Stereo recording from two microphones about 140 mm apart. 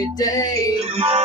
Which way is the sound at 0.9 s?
50° right (ahead or behind).